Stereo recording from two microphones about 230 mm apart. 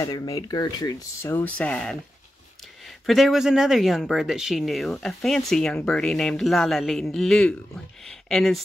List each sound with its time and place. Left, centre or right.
0.0 s speech: centre